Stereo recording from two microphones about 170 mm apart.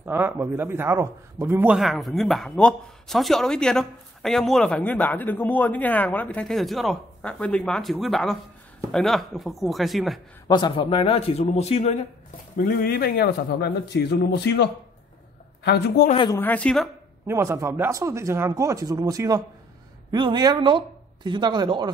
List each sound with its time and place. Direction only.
0.0 s a man's voice: 10° right (ahead or behind)
1.8 s speech: centre (ahead or behind)
10.5 s speech: 30° left (ahead or behind)
12.5 s a man's voice: 60° left (ahead or behind)
16.3 s a woman's voice: 10° left (ahead or behind)
17.3 s speech: 15° right (ahead or behind)